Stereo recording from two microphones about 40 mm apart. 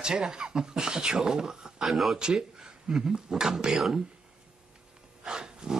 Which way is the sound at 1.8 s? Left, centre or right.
Centre.